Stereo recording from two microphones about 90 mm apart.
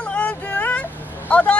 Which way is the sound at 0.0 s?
10° left (ahead or behind).